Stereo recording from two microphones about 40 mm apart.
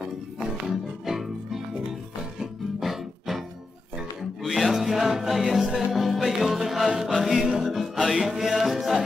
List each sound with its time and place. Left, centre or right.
0.5 s music: centre